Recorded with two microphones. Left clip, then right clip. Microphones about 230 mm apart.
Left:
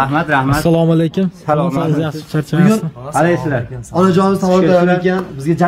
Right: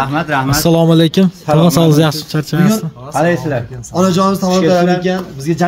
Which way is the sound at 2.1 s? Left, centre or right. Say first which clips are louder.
Right 1 dB; centre.